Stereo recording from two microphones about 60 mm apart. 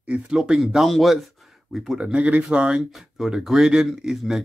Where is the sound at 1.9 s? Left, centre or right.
Centre.